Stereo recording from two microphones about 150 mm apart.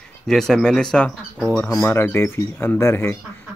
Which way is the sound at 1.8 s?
15° left (ahead or behind).